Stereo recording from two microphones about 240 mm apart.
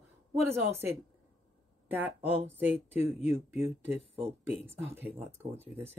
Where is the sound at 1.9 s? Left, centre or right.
Centre.